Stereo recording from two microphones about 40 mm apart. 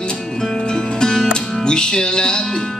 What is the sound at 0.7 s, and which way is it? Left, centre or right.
Music, centre.